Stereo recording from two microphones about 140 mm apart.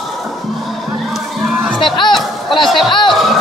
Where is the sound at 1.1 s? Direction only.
5° right (ahead or behind).